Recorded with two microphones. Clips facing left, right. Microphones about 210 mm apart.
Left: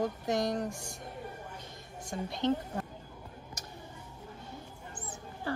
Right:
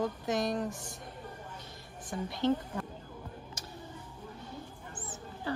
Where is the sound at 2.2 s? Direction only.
20° left (ahead or behind).